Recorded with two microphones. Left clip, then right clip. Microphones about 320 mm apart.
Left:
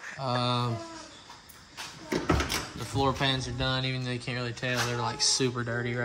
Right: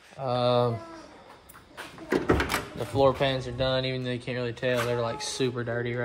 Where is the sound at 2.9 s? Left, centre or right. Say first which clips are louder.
Right 4 dB; centre.